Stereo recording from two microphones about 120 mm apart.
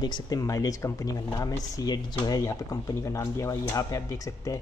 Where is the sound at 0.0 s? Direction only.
35° left (ahead or behind).